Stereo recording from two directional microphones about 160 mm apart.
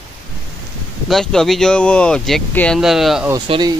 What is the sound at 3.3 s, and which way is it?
Speech, 30° right (ahead or behind).